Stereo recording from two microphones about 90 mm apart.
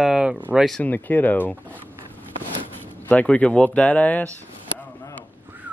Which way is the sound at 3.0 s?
15° left (ahead or behind).